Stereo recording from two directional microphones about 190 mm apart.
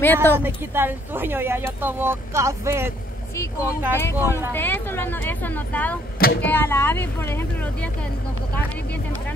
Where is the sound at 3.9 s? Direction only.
15° left (ahead or behind).